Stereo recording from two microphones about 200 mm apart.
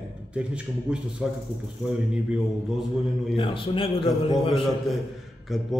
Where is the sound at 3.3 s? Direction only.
25° left (ahead or behind).